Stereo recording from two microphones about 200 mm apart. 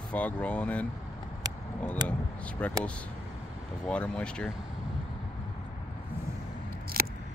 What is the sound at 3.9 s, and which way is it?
Speech, 5° left (ahead or behind).